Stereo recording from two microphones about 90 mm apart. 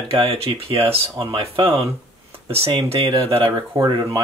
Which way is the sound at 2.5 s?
75° right (ahead or behind).